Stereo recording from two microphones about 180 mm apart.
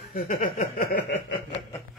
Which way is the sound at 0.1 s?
55° left (ahead or behind).